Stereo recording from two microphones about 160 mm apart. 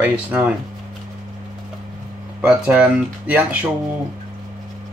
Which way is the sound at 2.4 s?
5° right (ahead or behind).